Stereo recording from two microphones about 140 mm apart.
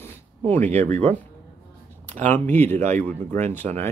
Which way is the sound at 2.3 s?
15° left (ahead or behind).